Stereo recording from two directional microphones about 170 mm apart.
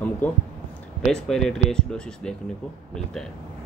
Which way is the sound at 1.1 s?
5° left (ahead or behind).